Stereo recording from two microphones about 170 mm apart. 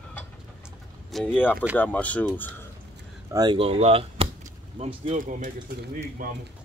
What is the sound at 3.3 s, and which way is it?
Speech, 25° right (ahead or behind).